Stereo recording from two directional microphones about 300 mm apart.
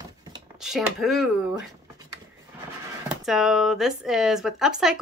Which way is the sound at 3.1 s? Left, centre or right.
Centre.